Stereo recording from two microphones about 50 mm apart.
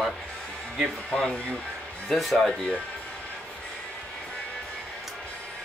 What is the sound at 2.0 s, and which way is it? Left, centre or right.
Speech, centre.